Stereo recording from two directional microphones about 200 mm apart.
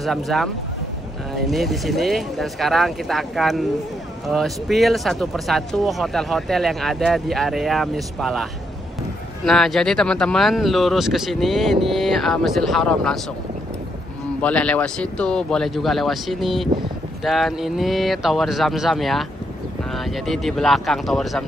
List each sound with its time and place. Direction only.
0.0 s speech: centre (ahead or behind)
14.4 s speech: 5° left (ahead or behind)